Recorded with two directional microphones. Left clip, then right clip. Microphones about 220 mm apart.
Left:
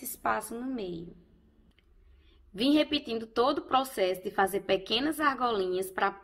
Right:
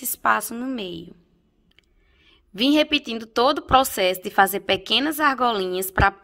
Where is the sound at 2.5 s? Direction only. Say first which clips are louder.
Right 7 dB; 25° right (ahead or behind).